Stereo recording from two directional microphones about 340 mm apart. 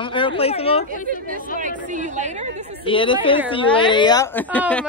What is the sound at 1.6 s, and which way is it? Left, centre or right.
Speech, right.